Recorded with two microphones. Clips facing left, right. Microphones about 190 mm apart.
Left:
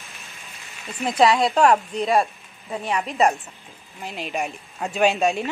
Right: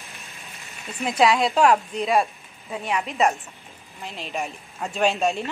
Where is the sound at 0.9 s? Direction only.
Centre (ahead or behind).